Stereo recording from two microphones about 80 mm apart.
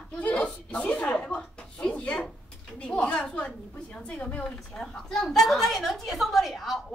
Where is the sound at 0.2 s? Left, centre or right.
Centre.